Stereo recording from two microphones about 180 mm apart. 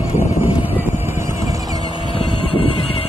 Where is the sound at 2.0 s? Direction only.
30° left (ahead or behind).